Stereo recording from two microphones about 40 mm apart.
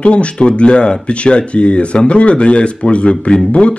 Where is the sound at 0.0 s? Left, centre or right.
Left.